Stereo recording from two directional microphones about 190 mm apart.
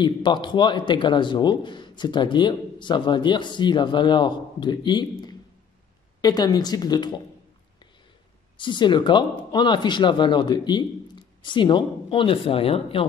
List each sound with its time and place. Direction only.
0.0 s speech: 25° left (ahead or behind)
8.5 s speech: 25° left (ahead or behind)